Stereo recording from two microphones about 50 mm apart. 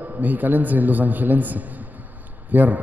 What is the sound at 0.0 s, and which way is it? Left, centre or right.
A man's voice, right.